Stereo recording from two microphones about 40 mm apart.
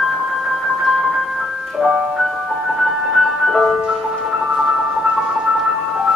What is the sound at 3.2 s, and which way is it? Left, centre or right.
Music, centre.